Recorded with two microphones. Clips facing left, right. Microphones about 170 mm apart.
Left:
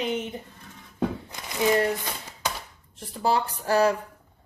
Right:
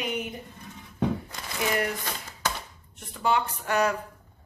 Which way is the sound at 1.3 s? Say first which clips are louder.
Left 6 dB; 25° left (ahead or behind).